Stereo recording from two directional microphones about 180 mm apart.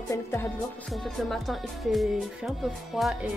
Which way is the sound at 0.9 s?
Centre (ahead or behind).